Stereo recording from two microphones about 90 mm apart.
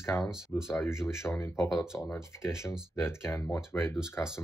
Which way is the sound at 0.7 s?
30° left (ahead or behind).